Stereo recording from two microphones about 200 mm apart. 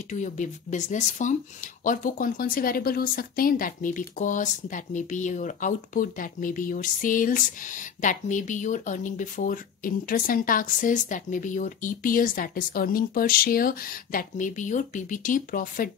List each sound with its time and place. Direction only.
0.1 s speech: 35° left (ahead or behind)